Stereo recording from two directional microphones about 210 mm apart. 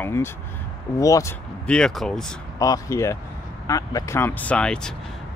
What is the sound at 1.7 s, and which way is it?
Speech, 5° left (ahead or behind).